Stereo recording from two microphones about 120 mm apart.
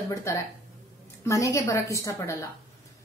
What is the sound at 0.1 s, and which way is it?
A woman's voice, 25° left (ahead or behind).